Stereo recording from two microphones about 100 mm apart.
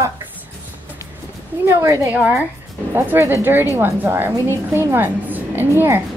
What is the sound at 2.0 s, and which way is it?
A woman's voice, 20° right (ahead or behind).